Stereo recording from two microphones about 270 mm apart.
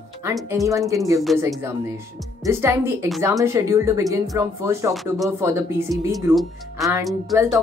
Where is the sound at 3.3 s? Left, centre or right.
Centre.